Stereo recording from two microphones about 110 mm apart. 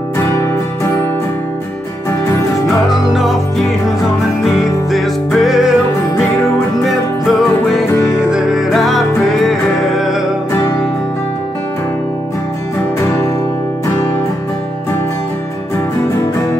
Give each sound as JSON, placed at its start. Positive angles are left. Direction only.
{"t": 0.3, "sound": "music", "side_deg": 25}
{"t": 2.9, "sound": "music", "side_deg": -5}
{"t": 4.9, "sound": "music", "side_deg": 0}
{"t": 10.5, "sound": "music", "side_deg": 25}